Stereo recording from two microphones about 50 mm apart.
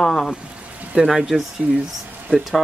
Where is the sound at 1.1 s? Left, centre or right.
Centre.